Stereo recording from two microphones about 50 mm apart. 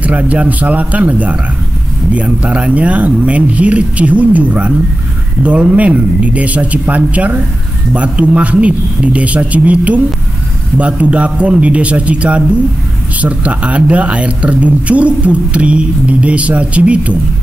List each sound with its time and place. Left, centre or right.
0.3 s speech: right